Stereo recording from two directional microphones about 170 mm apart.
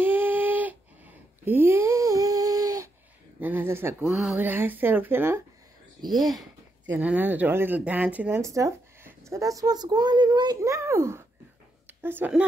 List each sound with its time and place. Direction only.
0.0 s a sound: 10° right (ahead or behind)
3.3 s speech: 10° right (ahead or behind)
6.0 s speech: centre (ahead or behind)